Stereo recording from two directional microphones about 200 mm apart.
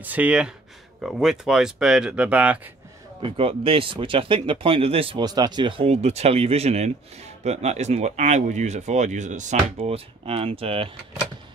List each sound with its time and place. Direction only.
0.0 s speech: 10° right (ahead or behind)
3.2 s speech: 25° right (ahead or behind)